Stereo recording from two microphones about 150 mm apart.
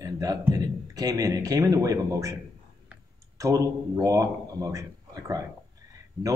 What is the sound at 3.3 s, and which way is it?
Speech, 20° right (ahead or behind).